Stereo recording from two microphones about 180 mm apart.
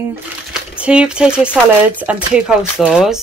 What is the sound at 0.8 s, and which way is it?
Speech, 5° right (ahead or behind).